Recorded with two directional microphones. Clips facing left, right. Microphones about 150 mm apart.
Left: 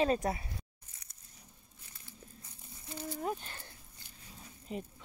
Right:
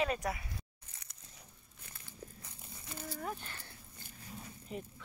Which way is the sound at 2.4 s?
85° right.